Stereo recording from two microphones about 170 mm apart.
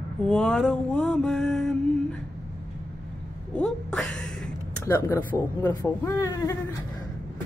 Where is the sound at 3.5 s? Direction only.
5° left (ahead or behind); by 6.5 s 20° left (ahead or behind).